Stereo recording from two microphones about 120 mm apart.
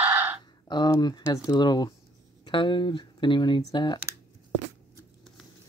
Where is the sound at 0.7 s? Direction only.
40° left (ahead or behind).